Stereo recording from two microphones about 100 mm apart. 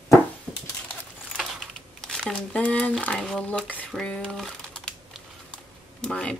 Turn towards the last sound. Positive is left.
turn(degrees=5)  # may be behind; listen again after turning